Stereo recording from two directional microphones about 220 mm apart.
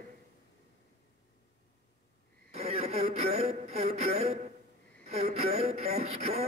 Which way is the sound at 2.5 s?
30° right (ahead or behind).